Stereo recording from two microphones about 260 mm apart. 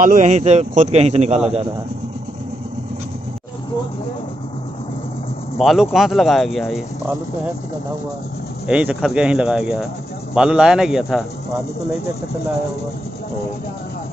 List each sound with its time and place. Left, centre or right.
0.0 s a man's voice: right
5.6 s speech: centre
8.6 s speech: centre